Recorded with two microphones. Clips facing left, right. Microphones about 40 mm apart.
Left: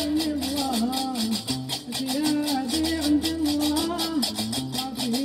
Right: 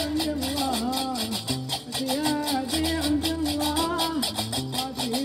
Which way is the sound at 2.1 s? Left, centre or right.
Centre.